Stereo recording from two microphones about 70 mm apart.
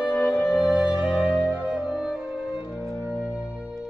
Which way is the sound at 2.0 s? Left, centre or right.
Centre.